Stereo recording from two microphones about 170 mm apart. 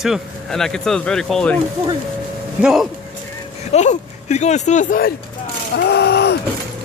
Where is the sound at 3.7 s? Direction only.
45° left (ahead or behind).